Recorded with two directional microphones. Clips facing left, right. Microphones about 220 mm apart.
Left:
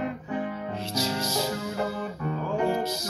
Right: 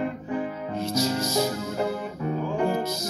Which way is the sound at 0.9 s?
45° right (ahead or behind).